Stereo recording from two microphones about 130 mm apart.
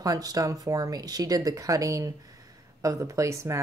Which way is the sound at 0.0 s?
30° right (ahead or behind).